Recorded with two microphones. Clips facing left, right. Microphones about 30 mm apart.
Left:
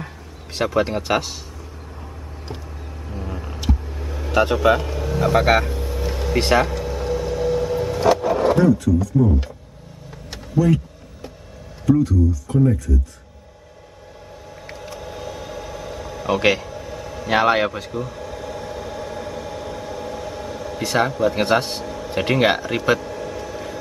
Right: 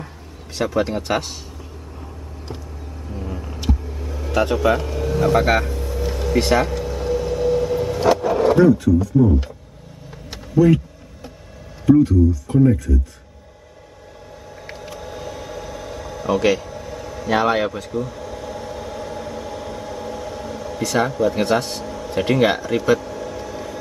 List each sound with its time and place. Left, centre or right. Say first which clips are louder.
0.6 s speech: left 1 dB; centre
3.1 s vehicle: right 1 dB; centre
6.7 s vehicle: right 1 dB; centre
8.7 s speech: right 2 dB; centre
10.3 s a sound: right 4 dB; centre
11.8 s speech: right 4 dB; centre
14.8 s vehicle: even; centre
16.3 s a man's voice: even; left
16.6 s a sound: even; centre
17.3 s a man's voice: left 1 dB; left
17.6 s a sound: right 1 dB; centre
20.8 s a man's voice: even; centre